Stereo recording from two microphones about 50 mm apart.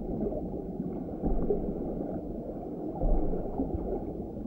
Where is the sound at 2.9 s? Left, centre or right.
Centre.